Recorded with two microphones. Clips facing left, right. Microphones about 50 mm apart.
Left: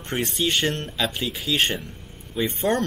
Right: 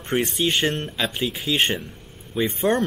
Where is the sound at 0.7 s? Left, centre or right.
Centre.